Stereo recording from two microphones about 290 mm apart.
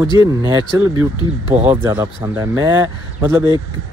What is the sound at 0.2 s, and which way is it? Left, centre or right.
Speech, centre.